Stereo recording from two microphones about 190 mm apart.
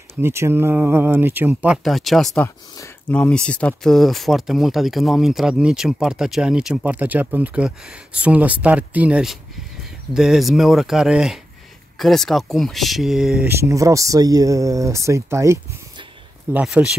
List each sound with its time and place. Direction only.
0.2 s speech: 15° right (ahead or behind)
13.6 s speech: 15° right (ahead or behind)